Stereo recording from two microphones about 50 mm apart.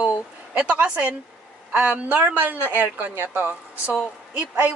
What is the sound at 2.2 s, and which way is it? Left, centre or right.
Speech, right.